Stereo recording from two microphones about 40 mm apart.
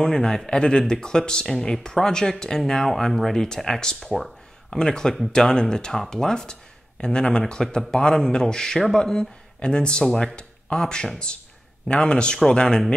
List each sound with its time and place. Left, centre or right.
0.0 s speech: centre
4.6 s speech: centre